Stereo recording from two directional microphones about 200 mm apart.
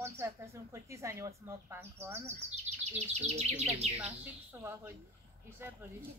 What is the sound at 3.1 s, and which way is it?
Chirp, 35° right (ahead or behind).